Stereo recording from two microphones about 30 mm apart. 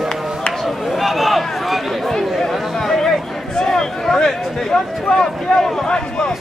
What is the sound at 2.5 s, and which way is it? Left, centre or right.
Chatter, centre.